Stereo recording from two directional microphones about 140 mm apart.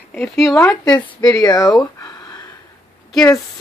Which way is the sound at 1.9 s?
25° left (ahead or behind).